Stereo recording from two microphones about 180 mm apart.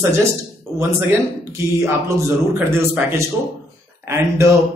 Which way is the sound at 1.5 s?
15° right (ahead or behind).